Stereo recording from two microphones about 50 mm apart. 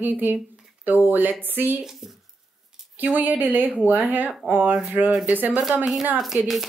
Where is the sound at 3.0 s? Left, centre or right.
Right.